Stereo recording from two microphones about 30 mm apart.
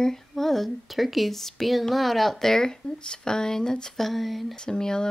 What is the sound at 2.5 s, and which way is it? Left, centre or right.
Speech, centre.